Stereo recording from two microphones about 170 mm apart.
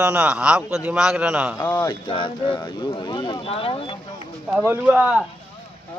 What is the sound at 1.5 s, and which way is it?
Speech, 20° left (ahead or behind).